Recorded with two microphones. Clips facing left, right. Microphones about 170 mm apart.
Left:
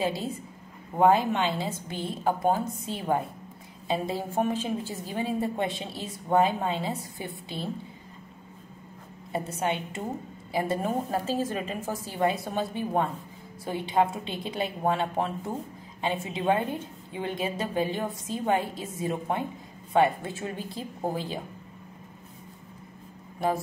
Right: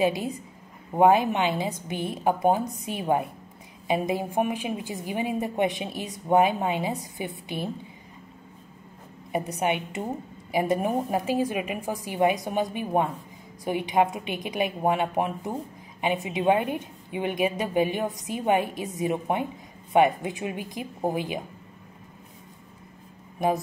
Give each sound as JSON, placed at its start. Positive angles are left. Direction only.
{"t": 0.0, "sound": "a woman's voice", "side_deg": -15}
{"t": 9.3, "sound": "a woman's voice", "side_deg": -15}
{"t": 23.4, "sound": "a woman's voice", "side_deg": -15}